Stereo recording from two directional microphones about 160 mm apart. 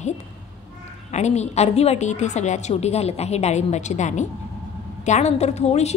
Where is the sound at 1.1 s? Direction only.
45° left (ahead or behind).